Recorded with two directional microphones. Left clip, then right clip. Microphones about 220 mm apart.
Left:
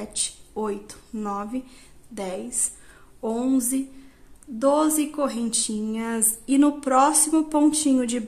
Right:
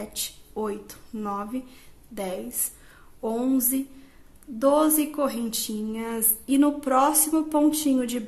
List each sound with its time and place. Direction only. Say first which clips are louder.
0.0 s speech: left 3 dB; centre (ahead or behind)